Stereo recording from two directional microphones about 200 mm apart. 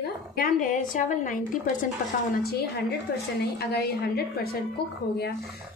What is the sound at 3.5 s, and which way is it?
Speech, 55° left (ahead or behind).